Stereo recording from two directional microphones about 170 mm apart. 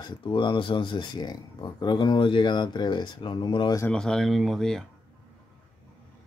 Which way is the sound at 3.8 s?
5° left (ahead or behind).